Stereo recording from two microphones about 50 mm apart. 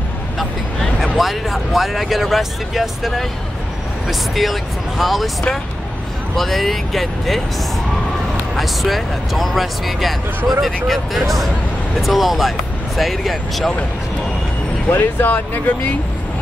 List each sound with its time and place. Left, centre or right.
1.0 s speech: centre
4.1 s speech: centre
6.3 s speech: centre
8.5 s speech: centre
14.9 s speech: left